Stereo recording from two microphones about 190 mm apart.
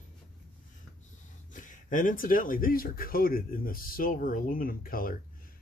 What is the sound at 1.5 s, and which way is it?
Speech, 45° left (ahead or behind).